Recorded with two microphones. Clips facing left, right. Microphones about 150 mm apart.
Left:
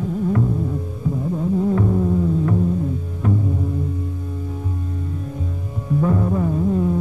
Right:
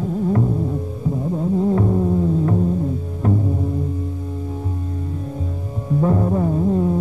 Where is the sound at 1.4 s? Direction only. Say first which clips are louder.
Right 1 dB; 30° right (ahead or behind).